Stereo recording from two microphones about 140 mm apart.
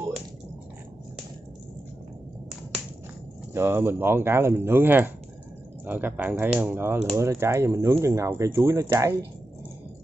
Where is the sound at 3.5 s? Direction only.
15° right (ahead or behind).